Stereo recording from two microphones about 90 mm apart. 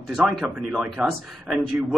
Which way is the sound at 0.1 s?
5° right (ahead or behind).